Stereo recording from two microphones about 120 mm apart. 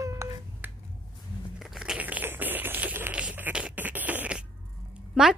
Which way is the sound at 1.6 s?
5° right (ahead or behind).